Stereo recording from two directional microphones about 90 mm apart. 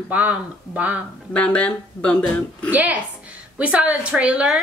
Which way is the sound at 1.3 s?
10° left (ahead or behind).